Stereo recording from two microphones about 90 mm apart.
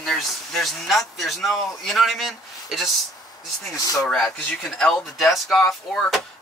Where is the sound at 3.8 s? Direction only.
40° left (ahead or behind).